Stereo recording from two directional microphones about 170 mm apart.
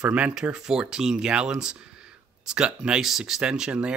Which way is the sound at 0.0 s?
5° right (ahead or behind).